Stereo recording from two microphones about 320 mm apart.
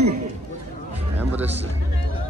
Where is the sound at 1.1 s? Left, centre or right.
Centre.